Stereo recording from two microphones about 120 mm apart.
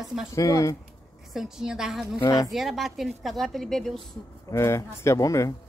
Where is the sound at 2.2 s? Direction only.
30° left (ahead or behind).